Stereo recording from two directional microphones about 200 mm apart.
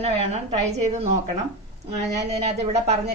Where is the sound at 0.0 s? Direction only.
30° right (ahead or behind).